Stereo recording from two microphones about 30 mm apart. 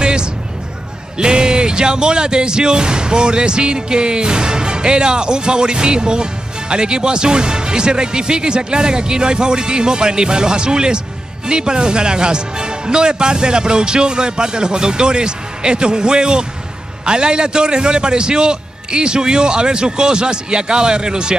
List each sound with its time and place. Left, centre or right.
0.0 s music: right
1.1 s speech: right